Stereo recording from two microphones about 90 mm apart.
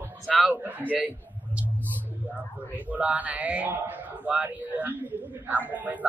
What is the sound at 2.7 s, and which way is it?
A man's voice, 20° right (ahead or behind).